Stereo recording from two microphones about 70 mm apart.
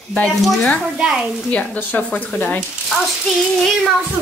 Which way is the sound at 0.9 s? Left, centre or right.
Centre.